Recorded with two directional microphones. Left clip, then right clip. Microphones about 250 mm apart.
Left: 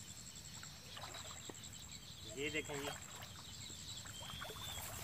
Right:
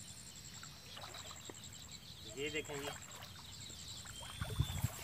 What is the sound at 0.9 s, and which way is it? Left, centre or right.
Rowboat, centre.